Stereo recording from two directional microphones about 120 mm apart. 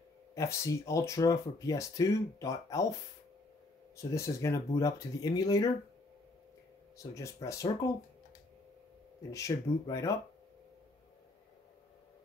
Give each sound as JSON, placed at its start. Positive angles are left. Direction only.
{"t": 0.3, "sound": "speech", "side_deg": 25}
{"t": 4.0, "sound": "speech", "side_deg": 25}
{"t": 7.0, "sound": "speech", "side_deg": 25}
{"t": 9.3, "sound": "speech", "side_deg": 25}